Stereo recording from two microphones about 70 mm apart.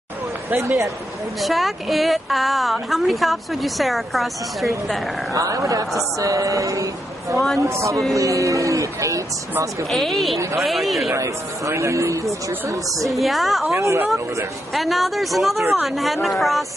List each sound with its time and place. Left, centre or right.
0.6 s speech: right
1.4 s a woman's voice: centre
5.3 s speech: right
7.3 s a woman's voice: centre
7.6 s speech: right
8.1 s speech: right
9.8 s a woman's voice: centre
11.1 s speech: right
13.0 s a woman's voice: centre